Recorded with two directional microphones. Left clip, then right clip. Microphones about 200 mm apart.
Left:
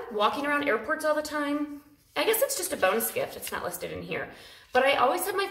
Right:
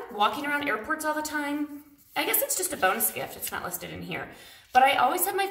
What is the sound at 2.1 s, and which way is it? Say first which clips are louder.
A woman's voice: left 3 dB; 5° right (ahead or behind).